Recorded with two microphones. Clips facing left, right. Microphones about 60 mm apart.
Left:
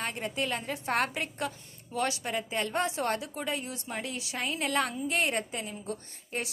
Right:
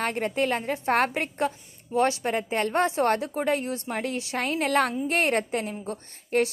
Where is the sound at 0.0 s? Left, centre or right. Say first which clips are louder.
Right 7 dB; right.